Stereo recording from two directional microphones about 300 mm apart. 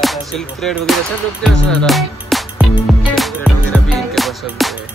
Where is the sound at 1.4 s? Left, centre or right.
Centre.